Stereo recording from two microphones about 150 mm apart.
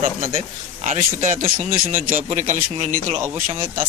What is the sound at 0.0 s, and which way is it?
A man's voice, 65° right (ahead or behind).